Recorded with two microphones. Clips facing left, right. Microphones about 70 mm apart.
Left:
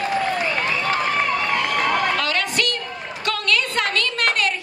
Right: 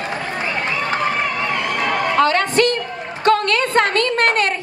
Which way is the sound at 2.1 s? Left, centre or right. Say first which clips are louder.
Right 7 dB; right.